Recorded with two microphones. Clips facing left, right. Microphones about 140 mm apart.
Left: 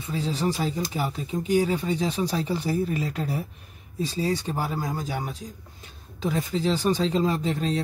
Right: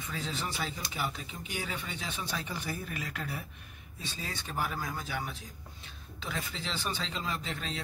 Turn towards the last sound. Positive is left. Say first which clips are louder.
# left 12 dB
turn(degrees=40)  # may be behind; listen again after turning